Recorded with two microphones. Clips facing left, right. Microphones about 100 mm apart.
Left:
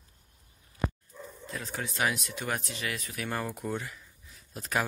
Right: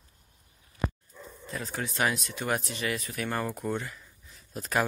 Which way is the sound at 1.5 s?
Centre (ahead or behind).